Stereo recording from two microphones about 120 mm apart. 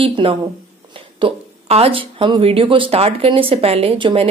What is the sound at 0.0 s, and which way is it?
Speech, 45° right (ahead or behind).